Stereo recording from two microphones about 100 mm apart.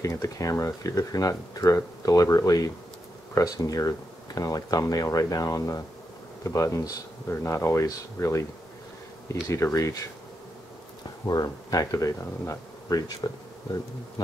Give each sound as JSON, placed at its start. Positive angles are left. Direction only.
{"t": 0.0, "sound": "speech", "side_deg": 35}
{"t": 11.2, "sound": "speech", "side_deg": 40}